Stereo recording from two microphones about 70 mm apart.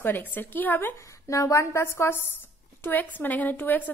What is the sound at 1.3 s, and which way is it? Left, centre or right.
Speech, left.